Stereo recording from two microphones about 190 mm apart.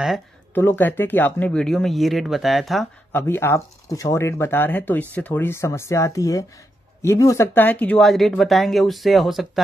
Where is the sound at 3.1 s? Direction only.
10° left (ahead or behind).